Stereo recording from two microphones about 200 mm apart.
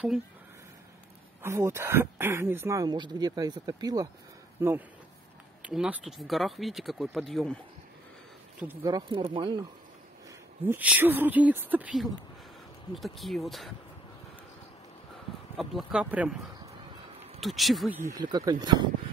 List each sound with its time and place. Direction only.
1.4 s speech: 15° right (ahead or behind); by 7.5 s centre (ahead or behind)
8.8 s speech: 20° right (ahead or behind)
10.6 s speech: 10° right (ahead or behind)
15.5 s speech: centre (ahead or behind)
17.4 s speech: centre (ahead or behind)
18.0 s speech: 20° right (ahead or behind)